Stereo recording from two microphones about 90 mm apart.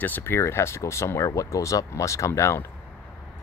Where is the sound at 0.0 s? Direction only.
25° left (ahead or behind).